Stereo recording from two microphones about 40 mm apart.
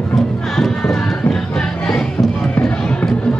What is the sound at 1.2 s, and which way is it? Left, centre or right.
Music, left.